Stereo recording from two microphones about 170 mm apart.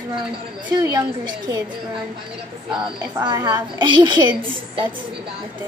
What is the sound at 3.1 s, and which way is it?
A woman's voice, 25° right (ahead or behind).